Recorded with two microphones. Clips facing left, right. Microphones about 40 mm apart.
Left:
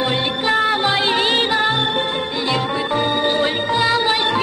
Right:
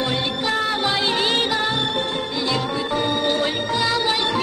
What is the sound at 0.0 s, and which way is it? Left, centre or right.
Music, left.